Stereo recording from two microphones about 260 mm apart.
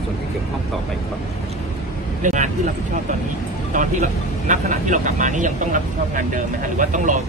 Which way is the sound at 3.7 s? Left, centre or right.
Right.